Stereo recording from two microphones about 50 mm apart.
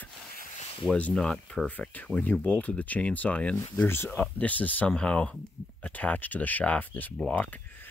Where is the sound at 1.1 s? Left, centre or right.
Centre.